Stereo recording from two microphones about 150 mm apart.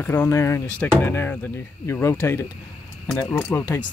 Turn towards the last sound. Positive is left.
turn(degrees=15)  # may be behind; listen again after turning